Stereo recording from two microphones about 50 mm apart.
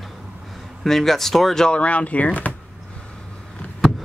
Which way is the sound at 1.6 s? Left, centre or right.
Left.